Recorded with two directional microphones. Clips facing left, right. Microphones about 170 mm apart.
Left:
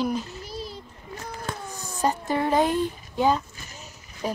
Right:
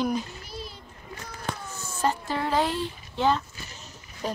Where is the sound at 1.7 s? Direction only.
15° left (ahead or behind).